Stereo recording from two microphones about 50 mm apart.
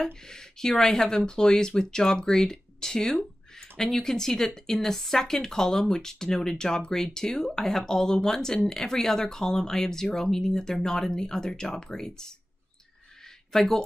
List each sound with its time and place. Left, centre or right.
0.0 s speech: centre
13.5 s speech: centre